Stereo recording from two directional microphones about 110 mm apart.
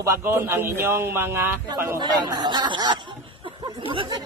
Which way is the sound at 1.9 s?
40° right (ahead or behind).